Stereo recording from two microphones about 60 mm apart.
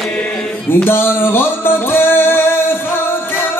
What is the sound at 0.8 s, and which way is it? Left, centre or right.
Music, left.